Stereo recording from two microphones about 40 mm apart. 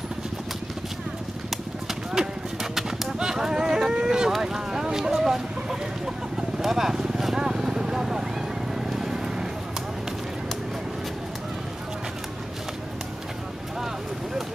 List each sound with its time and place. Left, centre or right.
2.1 s music: centre
3.2 s a sound: centre
5.1 s chicken: centre
6.3 s vehicle: centre